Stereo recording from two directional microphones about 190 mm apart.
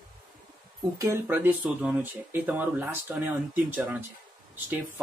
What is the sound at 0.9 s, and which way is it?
Speech, 10° right (ahead or behind).